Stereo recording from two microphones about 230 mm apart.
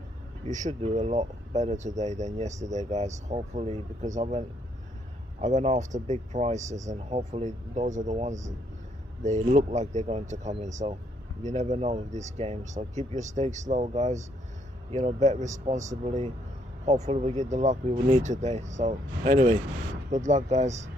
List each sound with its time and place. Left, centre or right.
0.5 s speech: right